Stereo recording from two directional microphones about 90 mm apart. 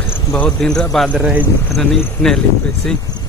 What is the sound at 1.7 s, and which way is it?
Speech, 5° left (ahead or behind).